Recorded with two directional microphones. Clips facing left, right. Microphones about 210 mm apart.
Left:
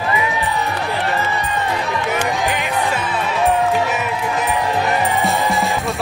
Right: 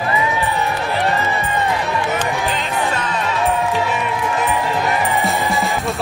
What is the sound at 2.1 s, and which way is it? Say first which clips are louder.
Music: left 1 dB; 10° left (ahead or behind).